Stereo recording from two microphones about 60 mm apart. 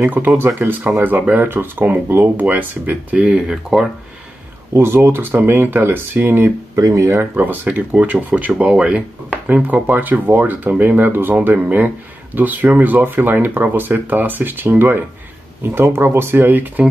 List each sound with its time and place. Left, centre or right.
0.2 s speech: right
3.3 s speech: centre
4.7 s speech: right
6.7 s speech: right
7.3 s speech: right
9.3 s speech: right